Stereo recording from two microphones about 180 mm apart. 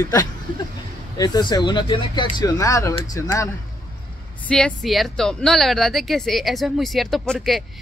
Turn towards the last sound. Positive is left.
turn(degrees=0)  # may be behind; listen again after turning